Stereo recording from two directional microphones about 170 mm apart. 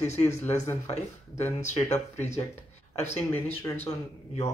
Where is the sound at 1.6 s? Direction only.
40° left (ahead or behind).